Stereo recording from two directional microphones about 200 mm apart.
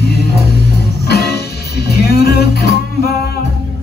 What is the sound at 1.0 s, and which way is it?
Music, 55° left (ahead or behind).